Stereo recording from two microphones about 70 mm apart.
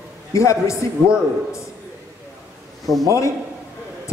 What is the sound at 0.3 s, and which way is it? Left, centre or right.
Speech, left.